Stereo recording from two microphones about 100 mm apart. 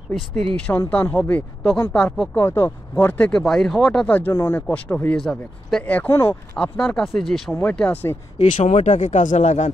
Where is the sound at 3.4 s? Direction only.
5° left (ahead or behind).